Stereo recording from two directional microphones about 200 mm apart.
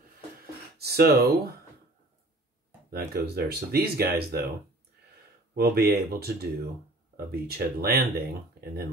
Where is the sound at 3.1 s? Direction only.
50° right (ahead or behind).